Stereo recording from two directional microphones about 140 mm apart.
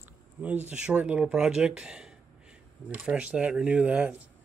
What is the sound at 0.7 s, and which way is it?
Speech, 5° right (ahead or behind).